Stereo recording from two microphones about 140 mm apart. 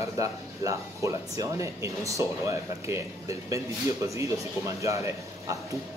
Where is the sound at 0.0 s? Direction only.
20° right (ahead or behind).